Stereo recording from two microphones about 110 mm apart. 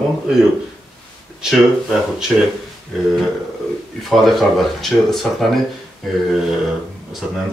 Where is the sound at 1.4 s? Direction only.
5° right (ahead or behind).